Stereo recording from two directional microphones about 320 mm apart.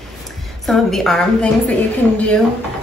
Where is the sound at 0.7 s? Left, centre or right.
Centre.